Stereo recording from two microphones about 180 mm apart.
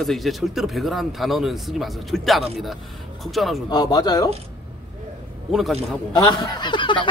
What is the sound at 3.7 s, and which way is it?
Speech, 20° left (ahead or behind).